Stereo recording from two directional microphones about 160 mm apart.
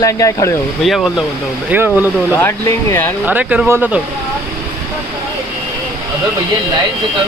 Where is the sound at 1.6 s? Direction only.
10° right (ahead or behind).